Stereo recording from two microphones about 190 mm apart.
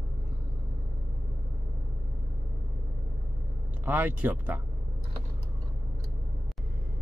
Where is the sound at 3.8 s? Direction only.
10° right (ahead or behind).